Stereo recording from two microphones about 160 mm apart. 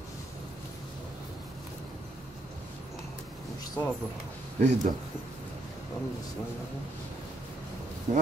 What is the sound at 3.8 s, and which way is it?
Speech, 20° left (ahead or behind).